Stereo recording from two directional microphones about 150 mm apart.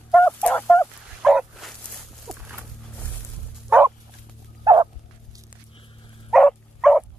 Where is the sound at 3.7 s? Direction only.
10° right (ahead or behind).